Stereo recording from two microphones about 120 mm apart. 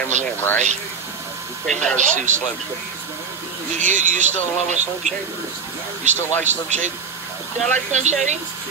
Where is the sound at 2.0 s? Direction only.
90° right.